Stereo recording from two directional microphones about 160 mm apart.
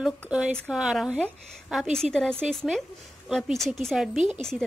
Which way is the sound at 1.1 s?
10° left (ahead or behind).